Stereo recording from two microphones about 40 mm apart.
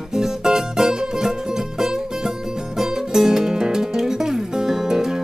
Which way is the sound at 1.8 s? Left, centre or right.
Centre.